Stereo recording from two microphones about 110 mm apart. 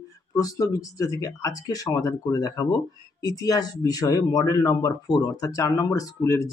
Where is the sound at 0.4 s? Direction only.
30° left (ahead or behind).